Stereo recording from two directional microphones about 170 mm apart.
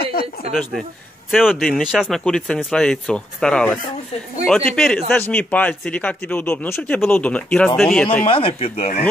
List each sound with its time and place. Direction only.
0.0 s a sound: 65° left (ahead or behind)
0.5 s speech: centre (ahead or behind)
8.3 s speech: 35° left (ahead or behind)